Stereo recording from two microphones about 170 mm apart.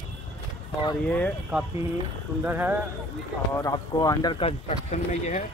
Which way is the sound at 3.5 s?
20° left (ahead or behind).